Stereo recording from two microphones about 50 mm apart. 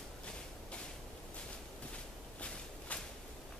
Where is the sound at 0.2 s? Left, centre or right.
Left.